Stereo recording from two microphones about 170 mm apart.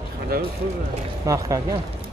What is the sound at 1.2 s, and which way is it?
Speech, 20° right (ahead or behind).